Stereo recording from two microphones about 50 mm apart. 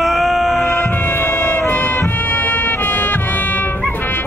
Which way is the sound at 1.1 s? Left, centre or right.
Left.